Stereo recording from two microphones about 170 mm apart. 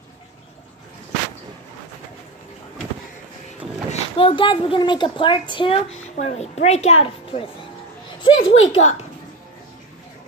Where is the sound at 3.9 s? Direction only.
30° left (ahead or behind).